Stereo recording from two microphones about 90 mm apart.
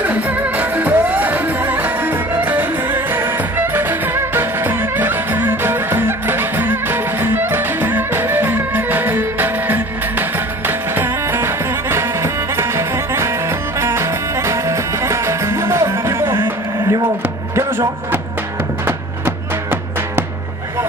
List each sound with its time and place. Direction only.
0.0 s music: 20° right (ahead or behind)